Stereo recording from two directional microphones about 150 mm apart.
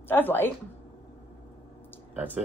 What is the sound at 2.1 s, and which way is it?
Speech, 10° right (ahead or behind).